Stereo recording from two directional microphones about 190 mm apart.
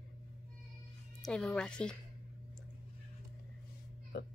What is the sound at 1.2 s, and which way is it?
Speech, 5° left (ahead or behind).